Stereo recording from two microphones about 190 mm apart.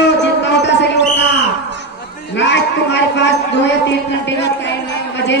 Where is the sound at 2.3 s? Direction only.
65° left (ahead or behind).